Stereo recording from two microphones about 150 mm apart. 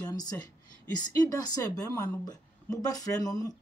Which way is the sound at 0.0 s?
25° left (ahead or behind).